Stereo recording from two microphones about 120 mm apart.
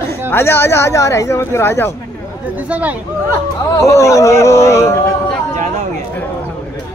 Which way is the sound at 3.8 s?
25° left (ahead or behind).